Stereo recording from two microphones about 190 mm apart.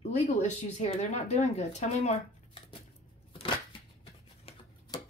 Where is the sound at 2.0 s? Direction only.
30° left (ahead or behind).